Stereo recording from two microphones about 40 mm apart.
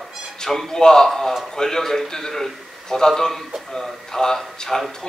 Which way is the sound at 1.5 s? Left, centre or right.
Centre.